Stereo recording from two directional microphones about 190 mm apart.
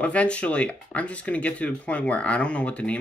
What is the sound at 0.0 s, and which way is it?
Speech, 5° left (ahead or behind).